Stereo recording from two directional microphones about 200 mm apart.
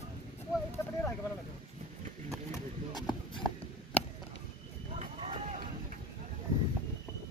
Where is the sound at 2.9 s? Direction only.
20° left (ahead or behind).